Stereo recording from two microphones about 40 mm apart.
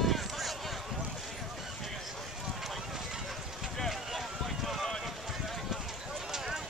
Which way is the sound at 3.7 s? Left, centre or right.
Centre.